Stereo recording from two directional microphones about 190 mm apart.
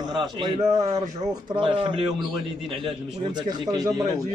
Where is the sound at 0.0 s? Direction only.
25° right (ahead or behind).